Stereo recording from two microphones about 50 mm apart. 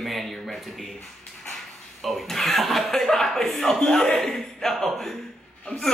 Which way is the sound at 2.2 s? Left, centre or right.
Centre.